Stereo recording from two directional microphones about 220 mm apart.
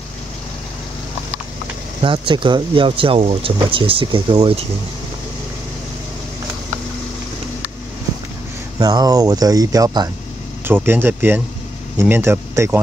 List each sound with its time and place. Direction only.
2.0 s speech: 20° right (ahead or behind)
8.7 s speech: 15° right (ahead or behind)